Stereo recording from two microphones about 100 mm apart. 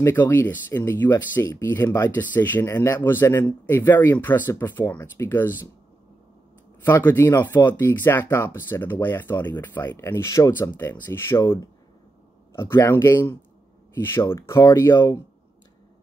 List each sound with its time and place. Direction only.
0.0 s speech: 20° left (ahead or behind)
6.8 s speech: 20° left (ahead or behind)